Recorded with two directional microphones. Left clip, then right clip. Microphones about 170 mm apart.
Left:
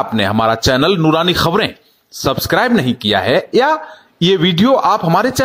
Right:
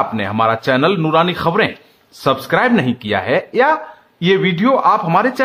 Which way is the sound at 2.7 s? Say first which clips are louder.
Left 3 dB; 25° left (ahead or behind).